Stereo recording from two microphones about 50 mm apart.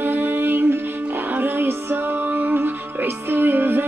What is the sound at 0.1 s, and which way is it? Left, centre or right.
Music, right.